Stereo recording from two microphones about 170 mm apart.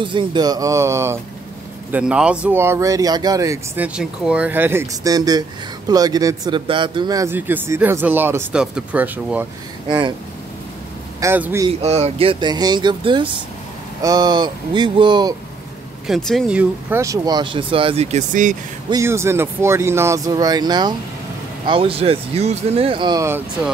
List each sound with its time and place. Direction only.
0.0 s speech: 30° right (ahead or behind); by 9.5 s 10° right (ahead or behind)
9.8 s speech: 25° right (ahead or behind)
11.1 s speech: 15° right (ahead or behind)
11.8 s speech: 40° right (ahead or behind)
16.1 s speech: centre (ahead or behind)
17.0 s speech: 20° right (ahead or behind); by 18.6 s 50° right (ahead or behind)
18.9 s speech: 15° right (ahead or behind)